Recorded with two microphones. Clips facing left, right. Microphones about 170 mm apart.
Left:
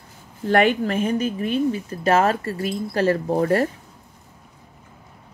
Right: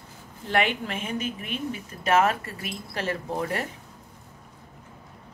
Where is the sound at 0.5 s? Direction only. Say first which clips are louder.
Left 8 dB; 45° left (ahead or behind).